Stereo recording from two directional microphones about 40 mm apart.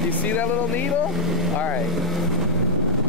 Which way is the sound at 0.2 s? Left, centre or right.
Left.